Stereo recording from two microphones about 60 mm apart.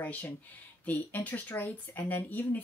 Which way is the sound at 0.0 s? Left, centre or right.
Left.